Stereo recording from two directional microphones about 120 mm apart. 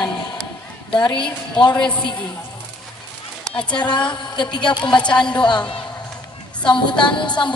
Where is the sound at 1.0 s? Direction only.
40° left (ahead or behind).